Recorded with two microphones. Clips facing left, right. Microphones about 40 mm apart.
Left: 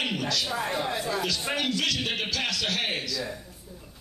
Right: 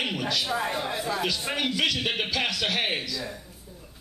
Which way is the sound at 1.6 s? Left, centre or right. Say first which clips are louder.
Right 3 dB; centre.